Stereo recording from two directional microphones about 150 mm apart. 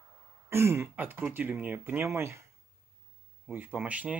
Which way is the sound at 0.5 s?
15° right (ahead or behind).